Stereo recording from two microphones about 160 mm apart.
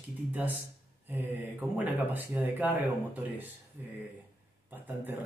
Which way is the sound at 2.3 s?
10° right (ahead or behind).